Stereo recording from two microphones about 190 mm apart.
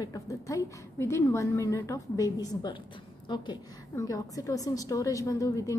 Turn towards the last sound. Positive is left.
turn(degrees=15)  # may be behind; listen again after turning